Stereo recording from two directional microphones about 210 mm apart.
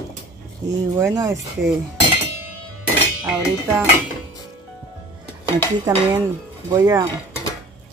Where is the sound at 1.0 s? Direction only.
15° right (ahead or behind).